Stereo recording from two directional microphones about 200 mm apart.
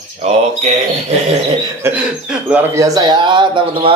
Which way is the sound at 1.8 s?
5° right (ahead or behind).